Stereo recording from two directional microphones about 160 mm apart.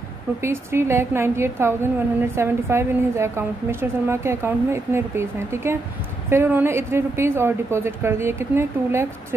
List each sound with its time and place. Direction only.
0.4 s a woman's voice: 15° right (ahead or behind)